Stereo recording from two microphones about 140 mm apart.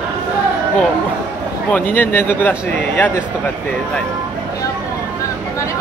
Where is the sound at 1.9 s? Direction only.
15° left (ahead or behind).